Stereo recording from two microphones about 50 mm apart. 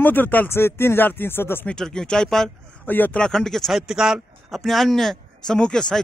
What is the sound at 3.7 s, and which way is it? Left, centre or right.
Speech, centre.